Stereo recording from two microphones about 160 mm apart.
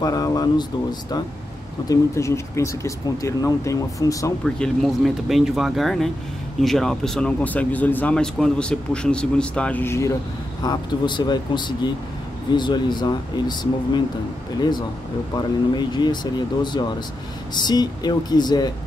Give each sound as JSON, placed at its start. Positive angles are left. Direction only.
{"t": 0.0, "sound": "speech", "side_deg": 20}
{"t": 1.9, "sound": "speech", "side_deg": 20}
{"t": 4.6, "sound": "speech", "side_deg": 0}
{"t": 10.6, "sound": "speech", "side_deg": 25}
{"t": 15.3, "sound": "speech", "side_deg": 25}